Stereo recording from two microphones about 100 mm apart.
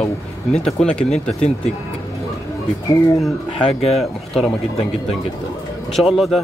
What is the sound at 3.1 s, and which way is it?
Speech, centre (ahead or behind).